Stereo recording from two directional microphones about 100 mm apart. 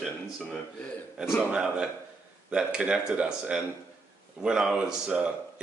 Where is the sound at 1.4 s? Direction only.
10° right (ahead or behind).